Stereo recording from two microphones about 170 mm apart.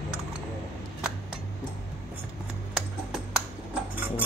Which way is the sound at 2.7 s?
Centre (ahead or behind).